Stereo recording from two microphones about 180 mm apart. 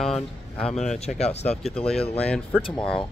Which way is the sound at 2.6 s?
30° left (ahead or behind).